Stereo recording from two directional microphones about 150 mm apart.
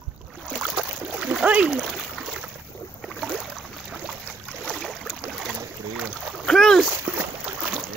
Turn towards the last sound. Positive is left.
turn(degrees=-10)  # may be behind; listen again after turning